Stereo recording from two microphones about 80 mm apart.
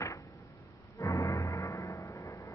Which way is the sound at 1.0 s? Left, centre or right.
Left.